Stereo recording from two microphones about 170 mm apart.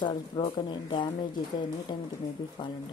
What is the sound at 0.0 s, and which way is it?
Speech, 30° left (ahead or behind).